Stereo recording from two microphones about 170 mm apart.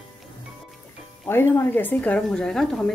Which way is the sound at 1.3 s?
15° left (ahead or behind).